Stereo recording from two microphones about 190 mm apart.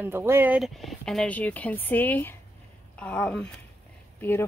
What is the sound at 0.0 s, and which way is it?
Speech, 10° right (ahead or behind).